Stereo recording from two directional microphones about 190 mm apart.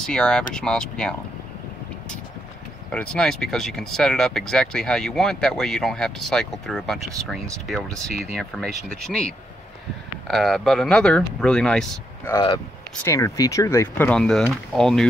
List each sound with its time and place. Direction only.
0.0 s speech: 5° left (ahead or behind)
2.9 s speech: 5° left (ahead or behind)
8.1 s speech: 55° right (ahead or behind)
8.4 s speech: centre (ahead or behind)
12.3 s speech: 20° left (ahead or behind); by 15.0 s centre (ahead or behind)